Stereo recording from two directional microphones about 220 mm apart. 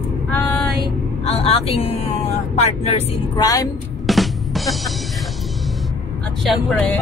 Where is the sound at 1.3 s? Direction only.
25° left (ahead or behind).